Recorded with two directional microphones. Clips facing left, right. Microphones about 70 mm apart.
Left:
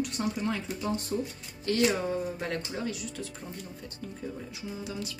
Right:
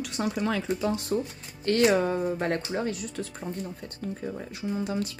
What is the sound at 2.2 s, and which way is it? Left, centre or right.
Speech, right.